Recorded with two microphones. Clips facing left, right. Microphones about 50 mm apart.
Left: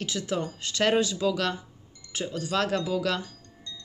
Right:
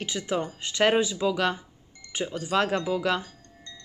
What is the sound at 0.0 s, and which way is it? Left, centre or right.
Speech, right.